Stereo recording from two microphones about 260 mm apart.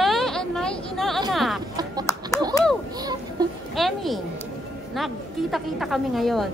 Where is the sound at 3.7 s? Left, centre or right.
Centre.